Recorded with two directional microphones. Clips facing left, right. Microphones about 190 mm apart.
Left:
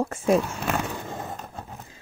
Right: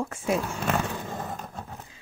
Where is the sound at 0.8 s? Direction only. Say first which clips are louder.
Even; 15° left (ahead or behind).